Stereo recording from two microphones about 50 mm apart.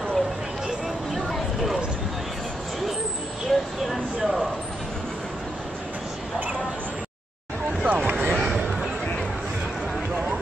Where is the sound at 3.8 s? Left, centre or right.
Centre.